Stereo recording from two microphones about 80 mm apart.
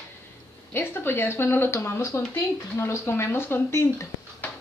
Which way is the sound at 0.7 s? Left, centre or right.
Left.